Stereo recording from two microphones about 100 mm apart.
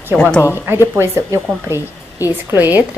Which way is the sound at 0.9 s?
25° right (ahead or behind).